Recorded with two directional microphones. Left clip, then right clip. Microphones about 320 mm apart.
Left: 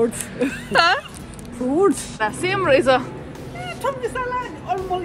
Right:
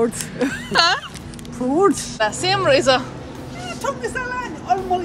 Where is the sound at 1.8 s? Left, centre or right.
Centre.